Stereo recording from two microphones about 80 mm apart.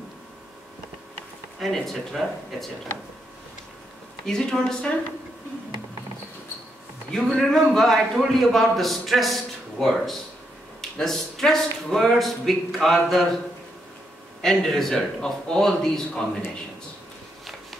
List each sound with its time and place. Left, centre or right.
1.6 s a man's voice: centre
4.3 s a woman's voice: centre
7.1 s a man's voice: centre
14.4 s a man's voice: centre